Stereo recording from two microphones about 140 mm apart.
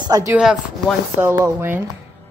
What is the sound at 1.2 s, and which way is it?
Speech, 15° right (ahead or behind).